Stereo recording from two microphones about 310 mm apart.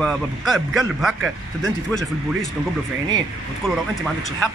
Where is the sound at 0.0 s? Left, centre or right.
Centre.